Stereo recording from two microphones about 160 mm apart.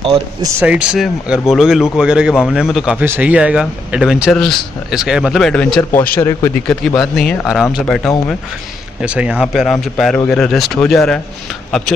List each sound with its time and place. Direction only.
0.0 s speech: 30° right (ahead or behind)
0.6 s speech: 10° right (ahead or behind); by 6.8 s 15° left (ahead or behind)
7.0 s speech: centre (ahead or behind)